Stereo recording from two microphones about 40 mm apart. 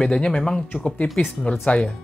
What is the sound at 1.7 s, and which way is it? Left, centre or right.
Speech, left.